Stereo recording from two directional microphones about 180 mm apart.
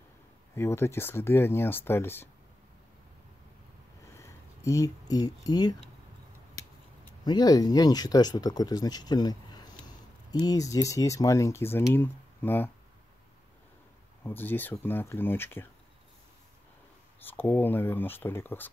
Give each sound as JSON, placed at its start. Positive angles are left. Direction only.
{"t": 0.6, "sound": "speech", "side_deg": 15}
{"t": 4.2, "sound": "speech", "side_deg": 15}
{"t": 7.2, "sound": "speech", "side_deg": 20}
{"t": 14.2, "sound": "speech", "side_deg": 10}
{"t": 17.3, "sound": "speech", "side_deg": 10}